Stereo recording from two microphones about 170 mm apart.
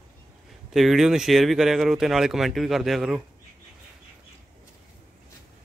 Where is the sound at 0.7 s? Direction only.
Centre (ahead or behind).